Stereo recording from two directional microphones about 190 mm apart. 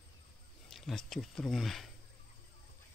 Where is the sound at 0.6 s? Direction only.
Centre (ahead or behind).